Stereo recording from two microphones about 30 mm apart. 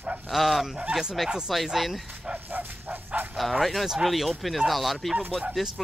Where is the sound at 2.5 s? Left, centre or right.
Right.